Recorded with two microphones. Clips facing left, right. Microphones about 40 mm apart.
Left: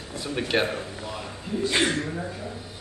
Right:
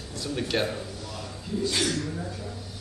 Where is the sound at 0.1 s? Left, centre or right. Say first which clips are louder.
Left 3 dB; left.